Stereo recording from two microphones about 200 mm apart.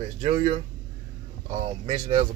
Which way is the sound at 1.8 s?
35° right (ahead or behind).